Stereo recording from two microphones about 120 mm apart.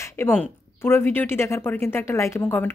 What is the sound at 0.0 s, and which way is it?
A woman's voice, 20° left (ahead or behind).